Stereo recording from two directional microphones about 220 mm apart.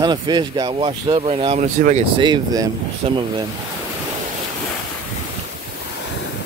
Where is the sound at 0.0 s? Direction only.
20° right (ahead or behind).